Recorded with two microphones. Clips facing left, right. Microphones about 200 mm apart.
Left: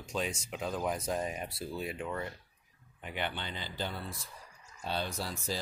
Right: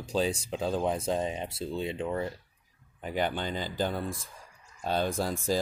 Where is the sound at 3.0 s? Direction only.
40° right (ahead or behind).